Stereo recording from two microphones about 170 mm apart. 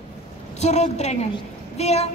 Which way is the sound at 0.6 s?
40° left (ahead or behind).